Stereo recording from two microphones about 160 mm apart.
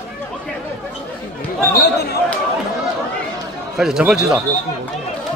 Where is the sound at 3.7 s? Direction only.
5° right (ahead or behind).